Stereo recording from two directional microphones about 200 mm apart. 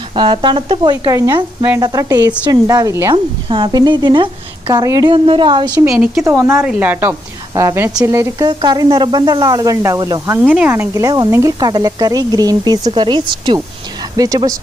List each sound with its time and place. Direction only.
0.1 s a woman's voice: 25° right (ahead or behind)